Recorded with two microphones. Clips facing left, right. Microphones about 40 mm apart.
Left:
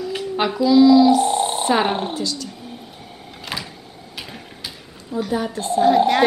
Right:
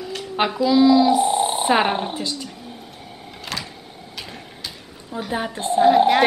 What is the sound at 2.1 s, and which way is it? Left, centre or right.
Speech, right.